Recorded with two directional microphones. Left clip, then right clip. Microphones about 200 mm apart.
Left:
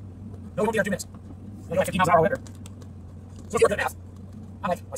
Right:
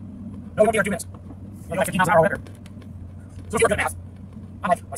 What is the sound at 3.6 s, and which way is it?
Speech, 10° right (ahead or behind).